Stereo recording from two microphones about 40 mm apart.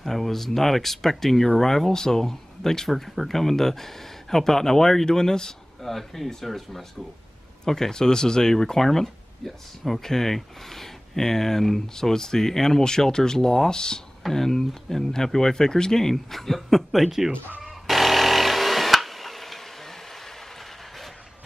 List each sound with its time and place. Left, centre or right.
0.0 s speech: centre
14.2 s speech: centre
17.8 s a sound: centre